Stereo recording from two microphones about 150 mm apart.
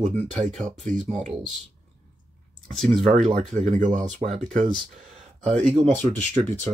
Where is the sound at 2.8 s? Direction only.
5° left (ahead or behind).